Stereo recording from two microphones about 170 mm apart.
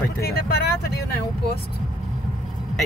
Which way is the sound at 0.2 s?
65° left (ahead or behind).